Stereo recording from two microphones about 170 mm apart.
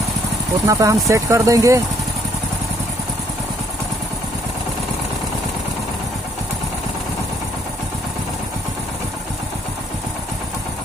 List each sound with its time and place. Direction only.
0.7 s speech: 20° right (ahead or behind)